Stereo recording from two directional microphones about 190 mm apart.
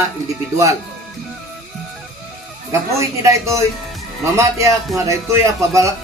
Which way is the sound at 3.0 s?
15° right (ahead or behind).